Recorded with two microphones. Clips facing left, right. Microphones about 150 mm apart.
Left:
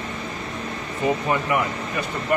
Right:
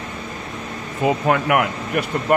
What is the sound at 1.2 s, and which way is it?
Speech, 90° right.